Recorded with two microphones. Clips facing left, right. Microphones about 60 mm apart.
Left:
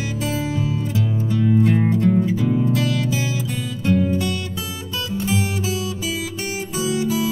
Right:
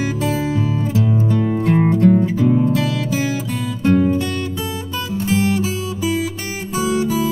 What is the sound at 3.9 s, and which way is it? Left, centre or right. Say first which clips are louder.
Music: right 4 dB; right.